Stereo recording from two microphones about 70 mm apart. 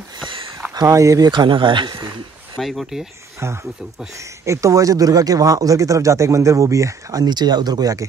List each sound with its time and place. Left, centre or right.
0.8 s speech: right
1.2 s speech: right
2.6 s speech: centre
3.4 s speech: right
7.2 s speech: right